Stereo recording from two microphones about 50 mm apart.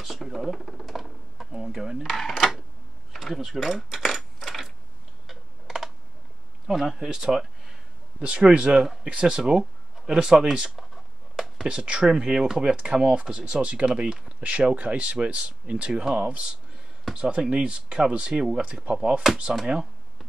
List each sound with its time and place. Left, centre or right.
0.0 s a sound: centre
1.5 s speech: centre
2.0 s speech: centre
3.1 s mechanisms: centre
5.2 s typing: centre
6.7 s speech: centre
8.5 s speech: right
11.3 s a sound: centre
11.6 s speech: centre
13.8 s speech: centre